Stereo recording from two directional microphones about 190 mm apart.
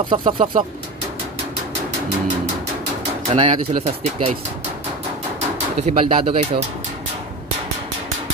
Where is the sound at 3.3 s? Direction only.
25° right (ahead or behind).